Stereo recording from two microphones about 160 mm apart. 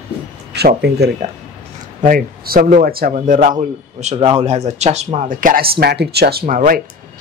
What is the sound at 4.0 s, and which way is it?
Speech, 40° right (ahead or behind).